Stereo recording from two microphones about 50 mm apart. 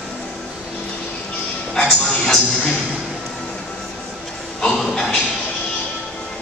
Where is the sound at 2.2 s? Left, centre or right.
Centre.